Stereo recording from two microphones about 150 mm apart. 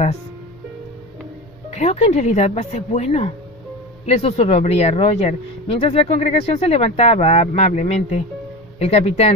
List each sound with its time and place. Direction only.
1.7 s speech: 45° left (ahead or behind)